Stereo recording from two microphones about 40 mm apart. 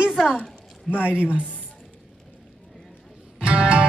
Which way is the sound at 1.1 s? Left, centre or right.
Right.